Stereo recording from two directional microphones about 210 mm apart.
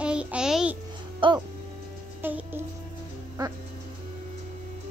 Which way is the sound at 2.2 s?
10° right (ahead or behind).